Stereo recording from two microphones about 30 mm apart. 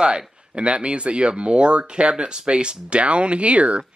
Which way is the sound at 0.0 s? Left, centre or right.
Right.